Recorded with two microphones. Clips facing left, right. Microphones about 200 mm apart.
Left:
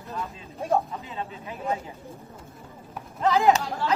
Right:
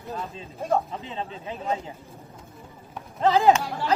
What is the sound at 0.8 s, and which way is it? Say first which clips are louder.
Speech: right 1 dB; 30° right (ahead or behind).